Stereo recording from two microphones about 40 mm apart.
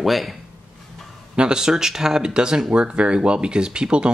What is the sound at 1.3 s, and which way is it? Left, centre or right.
Speech, right.